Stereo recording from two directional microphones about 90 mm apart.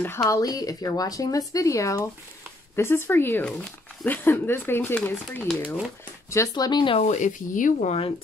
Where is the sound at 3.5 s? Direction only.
15° left (ahead or behind).